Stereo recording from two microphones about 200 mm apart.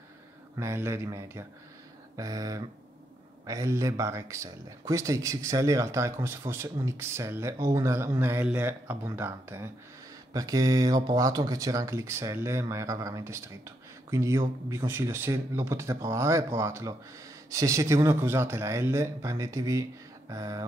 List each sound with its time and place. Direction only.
0.6 s speech: 15° right (ahead or behind)